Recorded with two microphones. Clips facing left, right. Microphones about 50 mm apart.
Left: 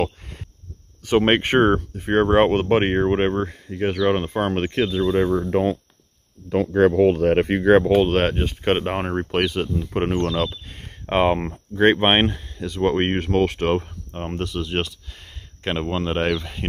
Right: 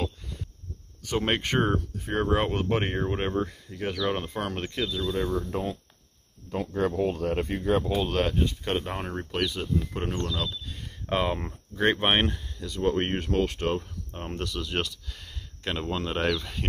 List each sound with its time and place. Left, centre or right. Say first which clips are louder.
1.0 s speech: left 9 dB; left
6.5 s speech: left 11 dB; left
14.1 s speech: left 6 dB; left